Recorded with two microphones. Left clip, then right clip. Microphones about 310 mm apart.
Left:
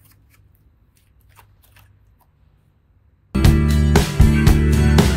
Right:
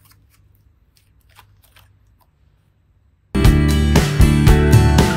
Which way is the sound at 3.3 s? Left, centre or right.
Centre.